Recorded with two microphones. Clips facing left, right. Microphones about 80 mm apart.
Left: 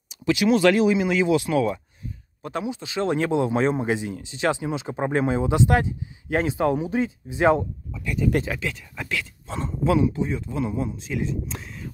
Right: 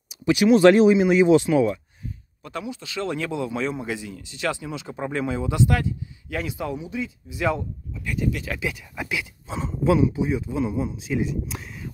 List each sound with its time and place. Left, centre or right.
0.1 s speech: right
2.4 s speech: left
6.6 s speech: left
8.5 s speech: centre
9.5 s a man's voice: centre